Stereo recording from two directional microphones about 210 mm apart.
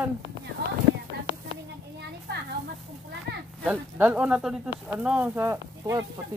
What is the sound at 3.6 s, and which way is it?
Speech, 5° right (ahead or behind).